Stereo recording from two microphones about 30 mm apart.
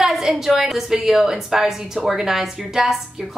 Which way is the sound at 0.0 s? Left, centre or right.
Centre.